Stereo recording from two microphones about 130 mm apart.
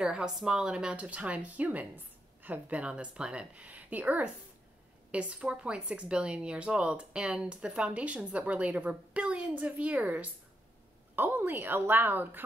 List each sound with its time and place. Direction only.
0.0 s speech: 5° right (ahead or behind)